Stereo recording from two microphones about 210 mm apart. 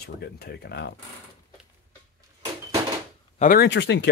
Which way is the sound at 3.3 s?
40° left (ahead or behind).